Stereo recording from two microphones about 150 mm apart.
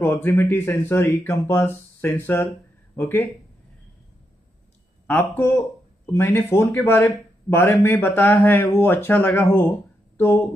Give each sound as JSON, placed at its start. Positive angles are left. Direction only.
{"t": 0.0, "sound": "a man's voice", "side_deg": 15}
{"t": 5.0, "sound": "a man's voice", "side_deg": 15}